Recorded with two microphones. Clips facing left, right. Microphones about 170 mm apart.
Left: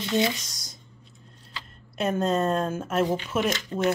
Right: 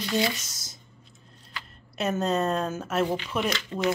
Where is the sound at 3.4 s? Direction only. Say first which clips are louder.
Left 2 dB; 45° left (ahead or behind).